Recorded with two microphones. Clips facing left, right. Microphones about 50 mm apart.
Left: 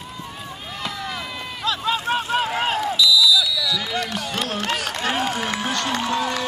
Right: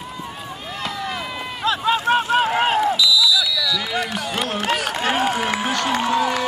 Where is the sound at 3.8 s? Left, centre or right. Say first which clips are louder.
Right 2 dB; right.